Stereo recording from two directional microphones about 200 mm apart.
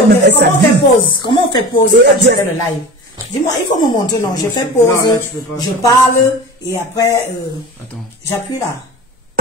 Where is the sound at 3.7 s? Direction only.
20° left (ahead or behind).